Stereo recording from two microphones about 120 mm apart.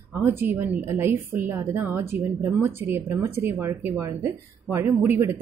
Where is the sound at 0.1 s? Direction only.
20° right (ahead or behind).